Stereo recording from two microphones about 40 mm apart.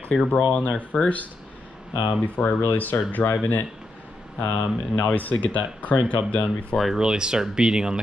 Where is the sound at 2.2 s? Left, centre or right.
Left.